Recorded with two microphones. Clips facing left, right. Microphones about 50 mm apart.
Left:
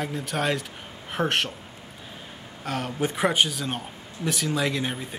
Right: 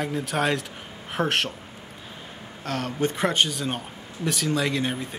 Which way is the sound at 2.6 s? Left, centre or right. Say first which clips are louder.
Right 1 dB; centre.